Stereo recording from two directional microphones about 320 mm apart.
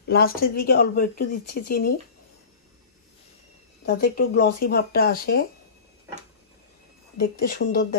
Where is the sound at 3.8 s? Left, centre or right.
Left.